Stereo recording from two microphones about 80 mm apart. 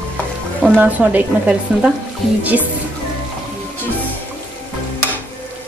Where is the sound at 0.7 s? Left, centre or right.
Right.